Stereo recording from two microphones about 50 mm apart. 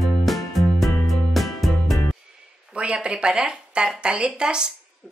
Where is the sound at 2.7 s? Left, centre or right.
Right.